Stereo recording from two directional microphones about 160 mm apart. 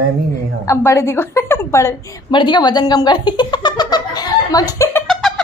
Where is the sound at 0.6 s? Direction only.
20° left (ahead or behind).